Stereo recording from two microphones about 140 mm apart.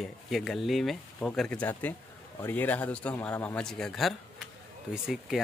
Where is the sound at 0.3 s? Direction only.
Centre (ahead or behind).